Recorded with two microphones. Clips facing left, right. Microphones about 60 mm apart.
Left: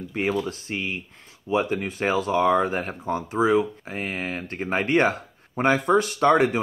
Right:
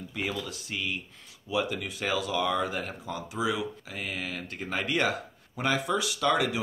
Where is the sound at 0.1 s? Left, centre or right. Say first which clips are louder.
Left 9 dB; left.